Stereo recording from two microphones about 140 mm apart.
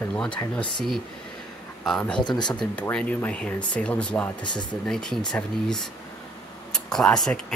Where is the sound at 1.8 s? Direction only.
5° left (ahead or behind).